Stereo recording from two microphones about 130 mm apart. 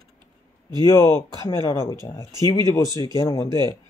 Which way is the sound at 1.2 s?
25° left (ahead or behind).